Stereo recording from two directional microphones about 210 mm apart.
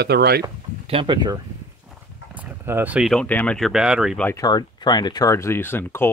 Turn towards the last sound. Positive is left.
turn(degrees=10)  # may be behind; listen again after turning